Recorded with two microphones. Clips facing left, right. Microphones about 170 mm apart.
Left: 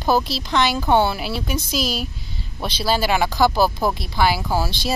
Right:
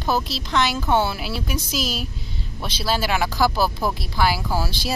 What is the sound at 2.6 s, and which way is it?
Speech, 30° left (ahead or behind).